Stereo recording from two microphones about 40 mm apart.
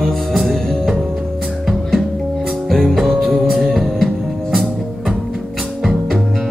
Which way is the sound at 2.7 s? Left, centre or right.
Centre.